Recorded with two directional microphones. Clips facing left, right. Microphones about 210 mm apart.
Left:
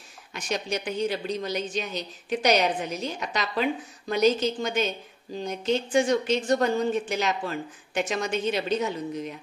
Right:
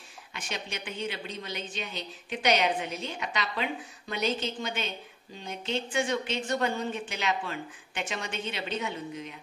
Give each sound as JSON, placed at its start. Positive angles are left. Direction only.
{"t": 0.3, "sound": "speech", "side_deg": 40}